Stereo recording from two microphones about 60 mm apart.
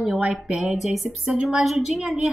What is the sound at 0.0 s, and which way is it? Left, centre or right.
A woman's voice, centre.